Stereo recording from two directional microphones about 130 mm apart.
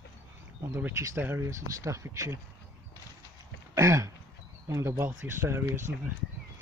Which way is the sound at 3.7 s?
25° right (ahead or behind).